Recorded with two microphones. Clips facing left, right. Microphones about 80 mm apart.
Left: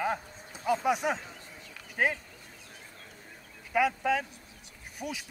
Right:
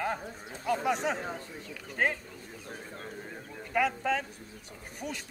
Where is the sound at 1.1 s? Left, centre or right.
Right.